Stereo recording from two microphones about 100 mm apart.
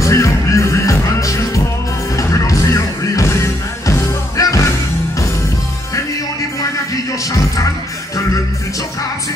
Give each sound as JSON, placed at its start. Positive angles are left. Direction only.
{"t": 0.0, "sound": "music", "side_deg": 30}